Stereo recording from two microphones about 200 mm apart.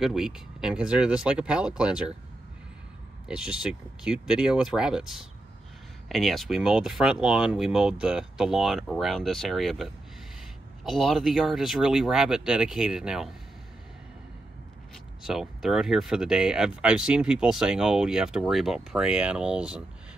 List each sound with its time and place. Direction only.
0.0 s speech: 5° right (ahead or behind)
3.3 s speech: 5° right (ahead or behind)
15.2 s speech: centre (ahead or behind)